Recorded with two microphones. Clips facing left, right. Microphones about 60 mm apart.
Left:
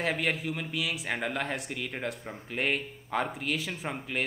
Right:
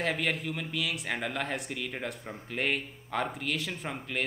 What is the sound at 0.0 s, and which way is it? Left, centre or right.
Speech, centre.